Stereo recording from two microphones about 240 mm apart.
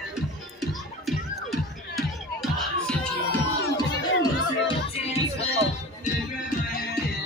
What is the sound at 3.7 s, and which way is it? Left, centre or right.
Music, centre.